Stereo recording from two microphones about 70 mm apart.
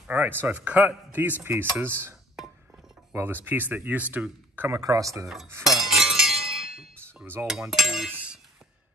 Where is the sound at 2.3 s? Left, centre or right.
Centre.